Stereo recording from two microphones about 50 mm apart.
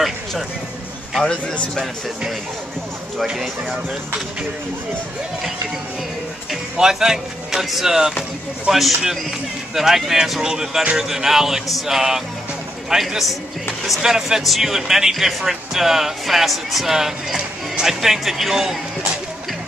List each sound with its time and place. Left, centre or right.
1.2 s speech: left
6.5 s speech: centre